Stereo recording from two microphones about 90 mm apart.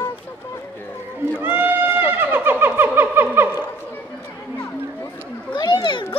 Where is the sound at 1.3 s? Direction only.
20° right (ahead or behind).